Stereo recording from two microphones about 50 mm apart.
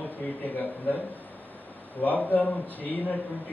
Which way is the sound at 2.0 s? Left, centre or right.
Left.